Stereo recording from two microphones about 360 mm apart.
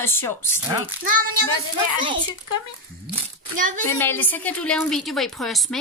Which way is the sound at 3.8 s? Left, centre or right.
Centre.